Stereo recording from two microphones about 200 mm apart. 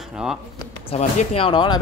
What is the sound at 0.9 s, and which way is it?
Speech, 30° left (ahead or behind).